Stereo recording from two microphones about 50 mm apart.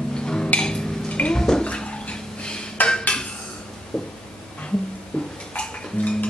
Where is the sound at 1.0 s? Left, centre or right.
Left.